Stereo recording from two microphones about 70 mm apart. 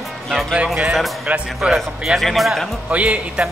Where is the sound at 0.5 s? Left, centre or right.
Centre.